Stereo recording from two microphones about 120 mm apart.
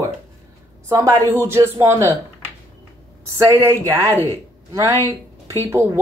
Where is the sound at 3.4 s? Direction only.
25° right (ahead or behind).